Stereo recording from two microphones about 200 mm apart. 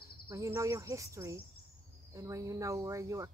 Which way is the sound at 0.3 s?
15° right (ahead or behind).